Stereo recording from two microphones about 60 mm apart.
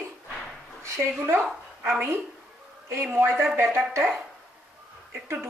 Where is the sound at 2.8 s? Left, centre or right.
Right.